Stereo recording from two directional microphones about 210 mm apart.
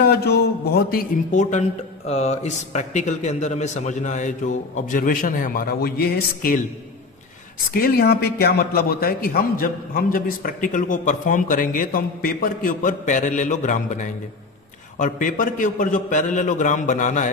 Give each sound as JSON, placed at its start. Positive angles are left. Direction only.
{"t": 0.0, "sound": "a man's voice", "side_deg": 50}
{"t": 7.7, "sound": "a man's voice", "side_deg": 45}